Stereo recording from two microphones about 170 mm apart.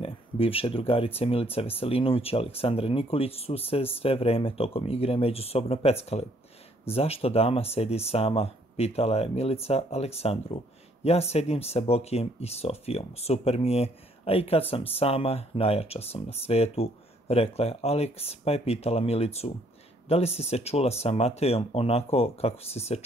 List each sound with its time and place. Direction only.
0.0 s speech: 35° left (ahead or behind)